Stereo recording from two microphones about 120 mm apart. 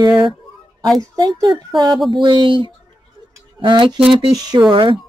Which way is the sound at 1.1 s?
35° right (ahead or behind).